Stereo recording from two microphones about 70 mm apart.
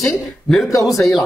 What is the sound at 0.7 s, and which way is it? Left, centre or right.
Speech, left.